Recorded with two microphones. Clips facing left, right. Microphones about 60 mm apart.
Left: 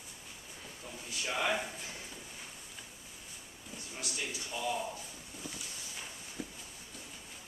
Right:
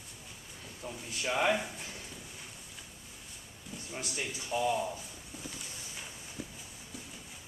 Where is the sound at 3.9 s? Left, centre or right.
Right.